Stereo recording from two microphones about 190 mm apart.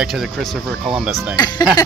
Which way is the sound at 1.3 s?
20° left (ahead or behind).